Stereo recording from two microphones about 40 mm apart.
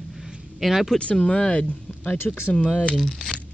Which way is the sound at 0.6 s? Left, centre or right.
Centre.